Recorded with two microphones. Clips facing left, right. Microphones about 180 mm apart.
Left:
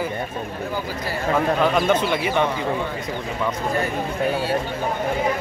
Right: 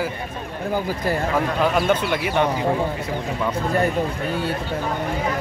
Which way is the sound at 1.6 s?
5° right (ahead or behind).